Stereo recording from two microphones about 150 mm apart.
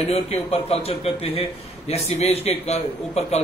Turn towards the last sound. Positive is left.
turn(degrees=45)  # may be behind; listen again after turning